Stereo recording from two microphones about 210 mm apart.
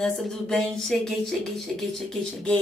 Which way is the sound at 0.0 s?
Centre (ahead or behind).